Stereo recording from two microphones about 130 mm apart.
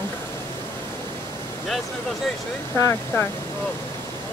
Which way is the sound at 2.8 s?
20° left (ahead or behind).